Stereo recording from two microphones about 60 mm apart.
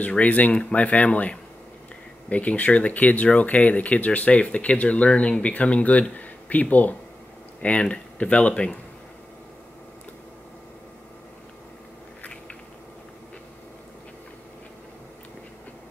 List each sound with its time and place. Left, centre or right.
0.1 s speech: left